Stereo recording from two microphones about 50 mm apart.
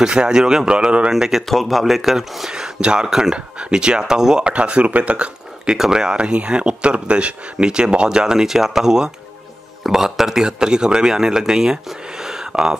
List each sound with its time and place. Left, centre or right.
0.0 s speech: centre
1.1 s speech: centre